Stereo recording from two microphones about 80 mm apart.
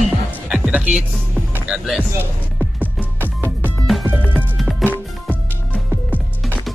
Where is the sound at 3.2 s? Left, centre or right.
Right.